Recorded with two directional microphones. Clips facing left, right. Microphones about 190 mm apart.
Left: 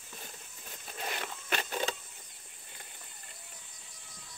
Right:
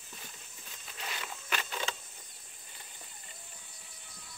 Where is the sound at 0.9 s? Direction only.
50° left (ahead or behind).